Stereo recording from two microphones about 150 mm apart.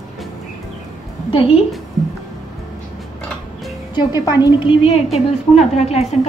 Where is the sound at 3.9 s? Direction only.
25° left (ahead or behind).